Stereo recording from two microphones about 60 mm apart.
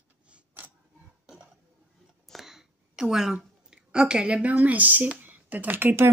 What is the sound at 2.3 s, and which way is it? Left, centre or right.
A woman's voice, centre.